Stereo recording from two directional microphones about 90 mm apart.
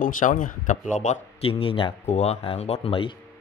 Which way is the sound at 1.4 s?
90° left.